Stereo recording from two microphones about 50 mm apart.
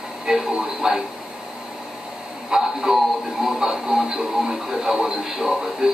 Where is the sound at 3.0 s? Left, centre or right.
Centre.